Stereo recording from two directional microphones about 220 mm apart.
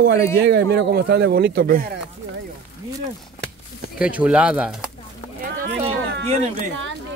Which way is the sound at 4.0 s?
5° right (ahead or behind).